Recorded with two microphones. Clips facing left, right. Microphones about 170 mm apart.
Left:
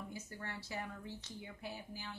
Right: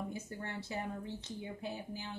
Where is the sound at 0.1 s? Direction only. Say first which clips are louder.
Right 4 dB; 25° right (ahead or behind).